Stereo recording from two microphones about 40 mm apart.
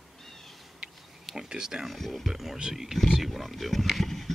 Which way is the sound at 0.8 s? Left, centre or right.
Centre.